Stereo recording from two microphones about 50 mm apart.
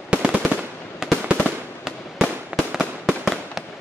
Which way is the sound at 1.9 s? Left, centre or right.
Centre.